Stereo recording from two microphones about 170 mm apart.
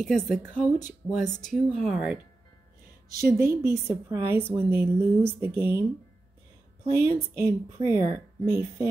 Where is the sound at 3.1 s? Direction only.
15° right (ahead or behind).